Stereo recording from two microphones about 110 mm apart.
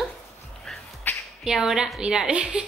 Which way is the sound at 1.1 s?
15° left (ahead or behind).